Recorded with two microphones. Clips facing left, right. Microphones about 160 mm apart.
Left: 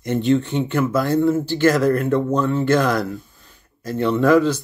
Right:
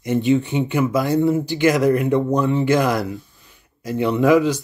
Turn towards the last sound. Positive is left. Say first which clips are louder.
# even
turn(degrees=-10)  # may be behind; listen again after turning